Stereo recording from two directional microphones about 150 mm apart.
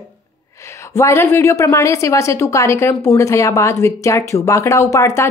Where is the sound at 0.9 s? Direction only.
15° left (ahead or behind).